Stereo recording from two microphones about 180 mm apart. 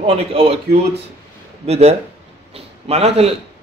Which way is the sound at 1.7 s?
35° right (ahead or behind).